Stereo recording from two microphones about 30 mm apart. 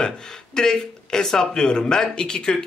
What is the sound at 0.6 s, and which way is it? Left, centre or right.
Speech, left.